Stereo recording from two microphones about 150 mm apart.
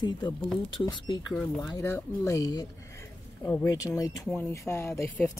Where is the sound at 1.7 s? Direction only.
20° left (ahead or behind).